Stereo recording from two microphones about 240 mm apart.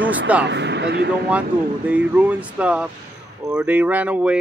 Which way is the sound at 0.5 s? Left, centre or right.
Right.